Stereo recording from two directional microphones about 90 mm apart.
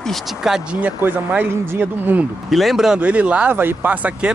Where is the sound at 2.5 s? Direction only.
Centre (ahead or behind).